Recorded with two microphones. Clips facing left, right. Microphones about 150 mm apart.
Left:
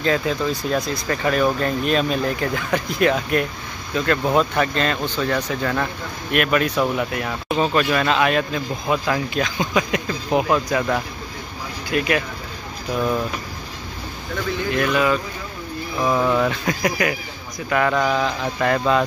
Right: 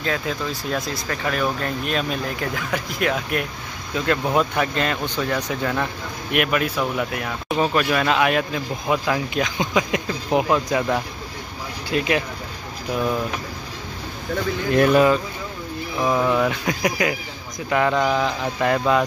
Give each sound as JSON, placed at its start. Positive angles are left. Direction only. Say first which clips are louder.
{"t": 0.0, "sound": "speech", "louder": "left 5 dB", "side_deg": 0}
{"t": 6.8, "sound": "speech", "louder": "left 3 dB", "side_deg": 0}
{"t": 14.7, "sound": "speech", "louder": "right 5 dB", "side_deg": -35}
{"t": 16.0, "sound": "speech", "louder": "left 1 dB", "side_deg": -5}